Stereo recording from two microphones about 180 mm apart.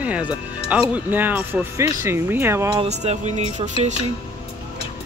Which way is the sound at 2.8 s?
35° right (ahead or behind).